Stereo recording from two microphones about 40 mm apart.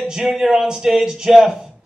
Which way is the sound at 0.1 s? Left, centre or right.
Centre.